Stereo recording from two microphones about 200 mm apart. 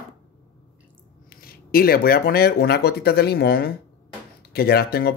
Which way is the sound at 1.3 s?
50° left (ahead or behind).